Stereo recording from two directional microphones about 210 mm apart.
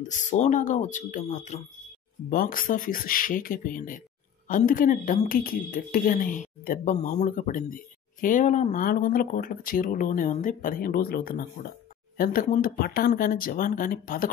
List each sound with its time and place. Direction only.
0.0 s a woman's voice: 35° left (ahead or behind)